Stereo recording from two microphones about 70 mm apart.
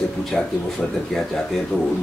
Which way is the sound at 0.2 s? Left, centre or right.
Centre.